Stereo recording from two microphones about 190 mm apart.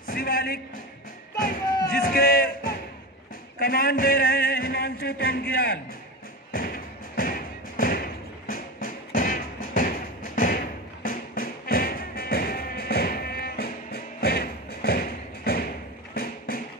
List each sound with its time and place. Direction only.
0.0 s a sound: 50° left (ahead or behind)
1.3 s music: 50° left (ahead or behind)
1.9 s a sound: 50° left (ahead or behind)
3.5 s a man's voice: 50° left (ahead or behind)
6.5 s thump: 50° left (ahead or behind)
16.2 s music: 55° left (ahead or behind)